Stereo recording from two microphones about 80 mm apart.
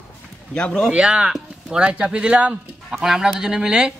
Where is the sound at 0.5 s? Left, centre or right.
Centre.